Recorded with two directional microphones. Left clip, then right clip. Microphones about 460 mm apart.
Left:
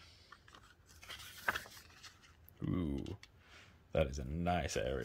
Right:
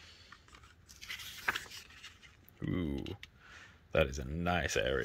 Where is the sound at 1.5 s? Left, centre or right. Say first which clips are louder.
Right 2 dB; centre.